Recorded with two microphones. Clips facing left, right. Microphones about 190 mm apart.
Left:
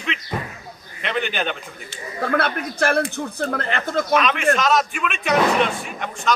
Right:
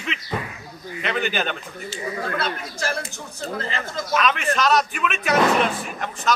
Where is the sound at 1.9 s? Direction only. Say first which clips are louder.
Left 4 dB; 60° left (ahead or behind).